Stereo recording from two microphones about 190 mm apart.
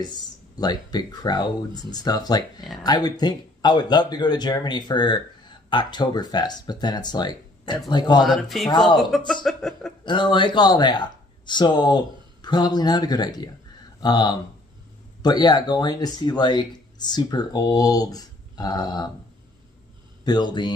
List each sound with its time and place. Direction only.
0.6 s speech: 20° left (ahead or behind)
8.2 s speech: centre (ahead or behind)
9.3 s a sound: centre (ahead or behind)
10.0 s speech: 25° left (ahead or behind)
20.2 s speech: 20° left (ahead or behind)